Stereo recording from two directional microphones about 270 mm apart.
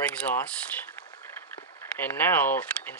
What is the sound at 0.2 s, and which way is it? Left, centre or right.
Speech, centre.